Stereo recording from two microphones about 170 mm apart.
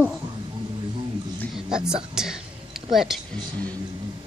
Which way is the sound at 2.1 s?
5° right (ahead or behind).